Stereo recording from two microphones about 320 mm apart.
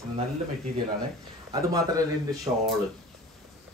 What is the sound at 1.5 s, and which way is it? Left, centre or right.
Speech, centre.